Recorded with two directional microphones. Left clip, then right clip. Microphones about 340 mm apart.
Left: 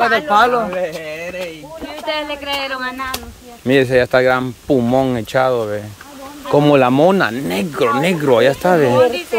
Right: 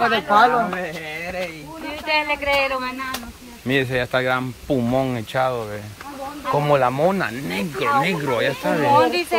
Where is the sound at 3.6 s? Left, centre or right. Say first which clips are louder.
Left 8 dB; centre.